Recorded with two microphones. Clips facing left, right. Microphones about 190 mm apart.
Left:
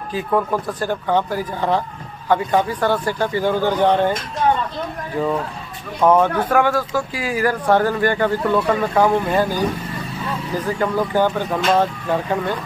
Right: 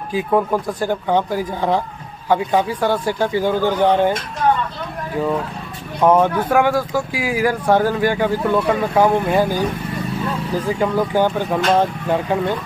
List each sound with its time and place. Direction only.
0.1 s speech: 15° right (ahead or behind)
6.0 s speech: 10° right (ahead or behind)
10.8 s speech: 10° right (ahead or behind)